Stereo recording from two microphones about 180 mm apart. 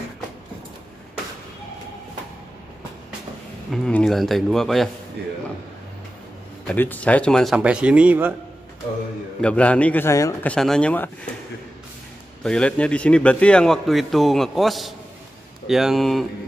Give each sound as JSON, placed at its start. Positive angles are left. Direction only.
{"t": 3.7, "sound": "a man's voice", "side_deg": 0}
{"t": 5.2, "sound": "speech", "side_deg": -65}
{"t": 6.7, "sound": "a man's voice", "side_deg": 10}
{"t": 9.4, "sound": "a man's voice", "side_deg": 5}
{"t": 10.5, "sound": "a man's voice", "side_deg": 5}
{"t": 12.4, "sound": "a man's voice", "side_deg": 5}